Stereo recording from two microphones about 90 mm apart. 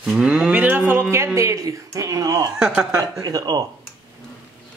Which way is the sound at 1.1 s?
30° right (ahead or behind).